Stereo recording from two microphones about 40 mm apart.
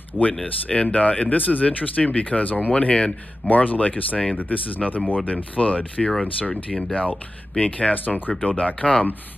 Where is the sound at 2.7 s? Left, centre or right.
Left.